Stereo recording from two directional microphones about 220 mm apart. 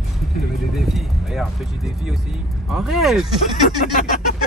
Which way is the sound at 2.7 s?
Centre (ahead or behind).